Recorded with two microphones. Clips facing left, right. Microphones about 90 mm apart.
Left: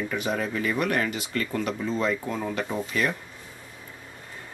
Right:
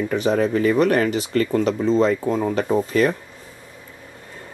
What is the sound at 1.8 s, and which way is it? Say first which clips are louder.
Speech: right 9 dB; 30° right (ahead or behind).